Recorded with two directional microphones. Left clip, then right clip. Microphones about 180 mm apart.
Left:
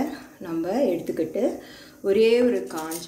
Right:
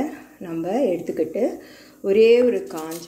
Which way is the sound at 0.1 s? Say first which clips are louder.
Even; 20° right (ahead or behind).